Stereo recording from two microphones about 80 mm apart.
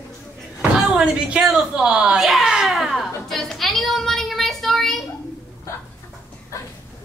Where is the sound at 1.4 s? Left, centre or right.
Centre.